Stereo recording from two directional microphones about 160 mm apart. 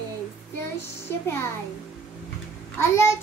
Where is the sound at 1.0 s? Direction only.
15° left (ahead or behind).